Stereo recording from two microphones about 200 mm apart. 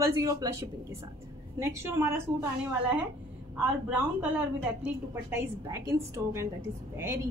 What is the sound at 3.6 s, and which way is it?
A woman's voice, 5° right (ahead or behind).